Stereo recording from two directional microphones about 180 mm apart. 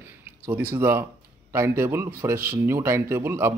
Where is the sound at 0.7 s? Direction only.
10° right (ahead or behind).